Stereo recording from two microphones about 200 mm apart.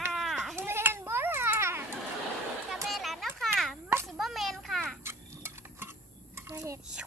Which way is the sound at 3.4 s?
Centre (ahead or behind).